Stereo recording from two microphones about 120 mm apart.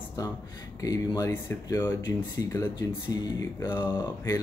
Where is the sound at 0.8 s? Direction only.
30° left (ahead or behind).